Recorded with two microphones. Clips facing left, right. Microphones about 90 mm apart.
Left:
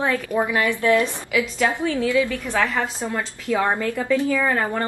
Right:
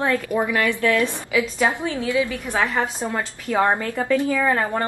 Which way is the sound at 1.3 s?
20° right (ahead or behind).